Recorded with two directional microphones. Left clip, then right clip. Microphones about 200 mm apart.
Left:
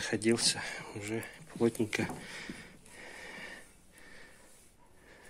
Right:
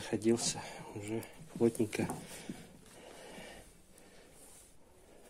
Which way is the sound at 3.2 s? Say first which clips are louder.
Left 5 dB; centre (ahead or behind).